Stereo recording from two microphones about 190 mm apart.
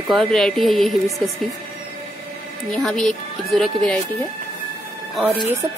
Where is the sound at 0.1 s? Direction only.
Centre (ahead or behind).